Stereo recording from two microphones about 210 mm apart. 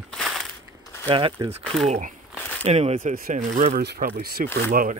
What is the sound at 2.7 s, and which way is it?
Speech, 30° right (ahead or behind).